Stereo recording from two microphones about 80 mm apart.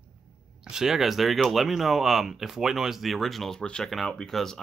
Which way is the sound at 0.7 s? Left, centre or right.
Centre.